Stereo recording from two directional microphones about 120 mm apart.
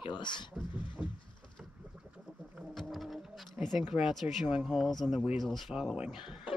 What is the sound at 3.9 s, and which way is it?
Speech, 5° right (ahead or behind).